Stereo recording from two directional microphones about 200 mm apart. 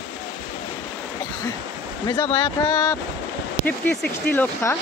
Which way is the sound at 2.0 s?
20° left (ahead or behind).